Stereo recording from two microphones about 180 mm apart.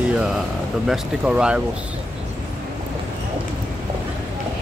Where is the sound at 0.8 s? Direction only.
5° right (ahead or behind).